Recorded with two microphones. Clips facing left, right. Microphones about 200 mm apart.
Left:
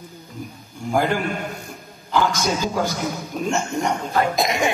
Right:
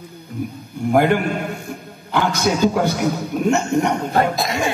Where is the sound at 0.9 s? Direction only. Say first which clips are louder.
Right 5 dB; 60° right (ahead or behind).